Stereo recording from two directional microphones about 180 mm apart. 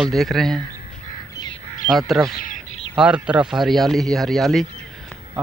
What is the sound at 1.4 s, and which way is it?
Crow, 20° left (ahead or behind).